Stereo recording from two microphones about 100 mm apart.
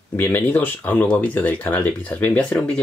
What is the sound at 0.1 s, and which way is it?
Speech, 20° left (ahead or behind).